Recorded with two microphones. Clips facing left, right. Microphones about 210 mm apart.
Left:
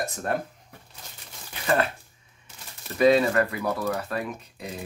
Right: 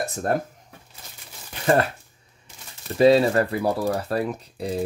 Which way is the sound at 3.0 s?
30° right (ahead or behind).